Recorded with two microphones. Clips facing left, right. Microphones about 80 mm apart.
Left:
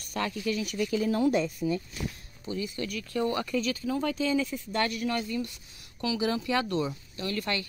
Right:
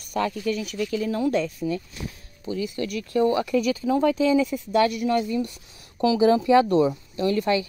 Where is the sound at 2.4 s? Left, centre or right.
Centre.